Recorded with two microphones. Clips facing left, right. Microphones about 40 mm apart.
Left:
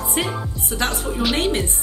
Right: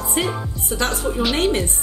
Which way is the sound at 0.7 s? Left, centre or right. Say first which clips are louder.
Right 1 dB; left.